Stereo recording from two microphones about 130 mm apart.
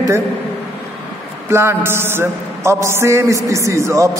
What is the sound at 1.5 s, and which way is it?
A man's voice, 20° right (ahead or behind).